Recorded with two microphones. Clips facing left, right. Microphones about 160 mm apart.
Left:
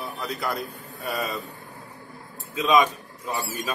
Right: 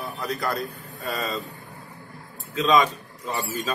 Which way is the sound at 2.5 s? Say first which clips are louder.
Even; 20° left (ahead or behind).